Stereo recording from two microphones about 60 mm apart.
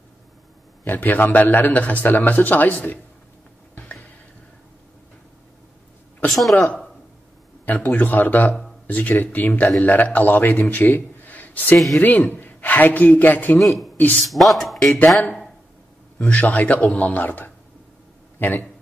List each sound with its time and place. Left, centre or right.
0.8 s a man's voice: left
3.7 s a sound: left
6.2 s speech: centre
7.6 s a man's voice: left
10.7 s a sound: left
12.0 s a man's voice: left
13.6 s speech: centre
16.2 s a man's voice: left
18.4 s a man's voice: left